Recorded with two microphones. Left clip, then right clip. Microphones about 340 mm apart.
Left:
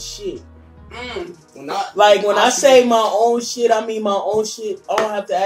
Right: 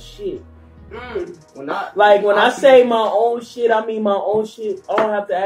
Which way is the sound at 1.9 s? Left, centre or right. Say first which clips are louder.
Even; centre.